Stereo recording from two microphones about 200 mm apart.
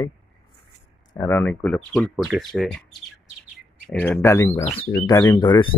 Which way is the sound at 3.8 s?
5° left (ahead or behind).